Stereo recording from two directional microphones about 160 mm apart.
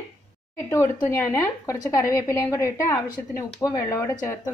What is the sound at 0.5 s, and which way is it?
Speech, 15° left (ahead or behind).